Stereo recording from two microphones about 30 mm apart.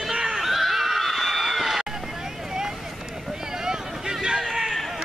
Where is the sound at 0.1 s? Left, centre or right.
Right.